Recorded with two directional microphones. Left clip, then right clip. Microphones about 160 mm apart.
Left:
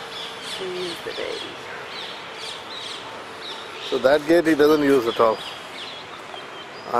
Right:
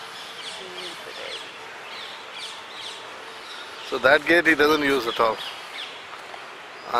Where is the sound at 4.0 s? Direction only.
30° right (ahead or behind).